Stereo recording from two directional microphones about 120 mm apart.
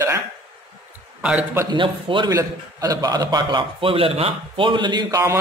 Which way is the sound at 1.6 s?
45° right (ahead or behind).